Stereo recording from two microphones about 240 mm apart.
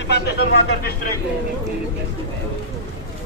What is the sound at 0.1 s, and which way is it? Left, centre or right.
Speech, left.